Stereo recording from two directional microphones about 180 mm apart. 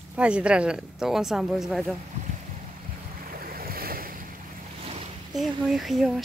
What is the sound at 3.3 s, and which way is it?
Waves, 55° right (ahead or behind).